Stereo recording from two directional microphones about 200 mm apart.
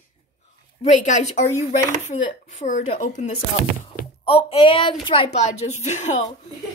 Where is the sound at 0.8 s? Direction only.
40° left (ahead or behind).